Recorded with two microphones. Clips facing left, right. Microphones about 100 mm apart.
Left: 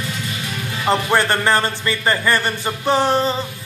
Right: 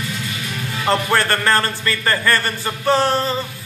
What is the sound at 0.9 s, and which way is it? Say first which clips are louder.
A man's voice: left 1 dB; 20° left (ahead or behind).